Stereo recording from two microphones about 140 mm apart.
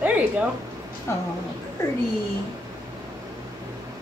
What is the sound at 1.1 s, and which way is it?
Speech, 20° left (ahead or behind).